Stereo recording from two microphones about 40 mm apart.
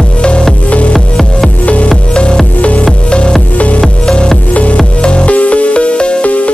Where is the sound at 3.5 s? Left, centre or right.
Left.